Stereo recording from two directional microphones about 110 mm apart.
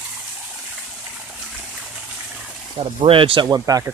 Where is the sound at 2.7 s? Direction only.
55° right (ahead or behind).